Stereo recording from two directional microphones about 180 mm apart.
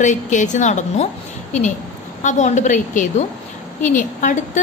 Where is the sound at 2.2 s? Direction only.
40° left (ahead or behind).